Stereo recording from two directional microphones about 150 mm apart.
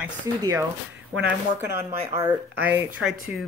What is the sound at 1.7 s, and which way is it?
Speech, 15° right (ahead or behind).